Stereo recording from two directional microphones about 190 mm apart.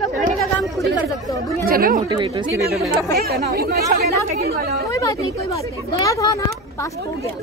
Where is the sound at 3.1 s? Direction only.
55° right (ahead or behind).